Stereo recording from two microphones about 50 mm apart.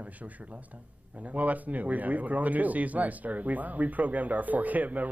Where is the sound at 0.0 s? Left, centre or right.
Right.